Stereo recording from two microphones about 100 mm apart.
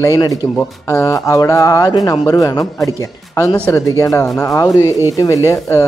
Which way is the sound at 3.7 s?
30° left (ahead or behind).